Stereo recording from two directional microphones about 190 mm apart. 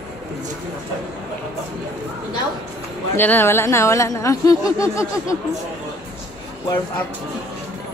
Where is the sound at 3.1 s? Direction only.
10° left (ahead or behind).